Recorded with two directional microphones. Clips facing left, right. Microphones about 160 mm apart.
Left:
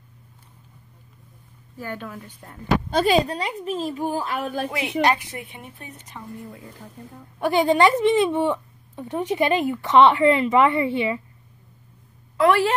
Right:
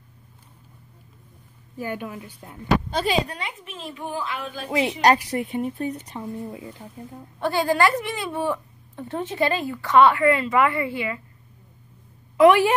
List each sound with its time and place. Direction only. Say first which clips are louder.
1.8 s a woman's voice: right 2 dB; 15° right (ahead or behind)
2.9 s a woman's voice: left 5 dB; 45° left (ahead or behind)
4.6 s speech: right 4 dB; 30° right (ahead or behind)
7.3 s a woman's voice: left 3 dB; 15° left (ahead or behind)
12.4 s a woman's voice: right 4 dB; 15° right (ahead or behind)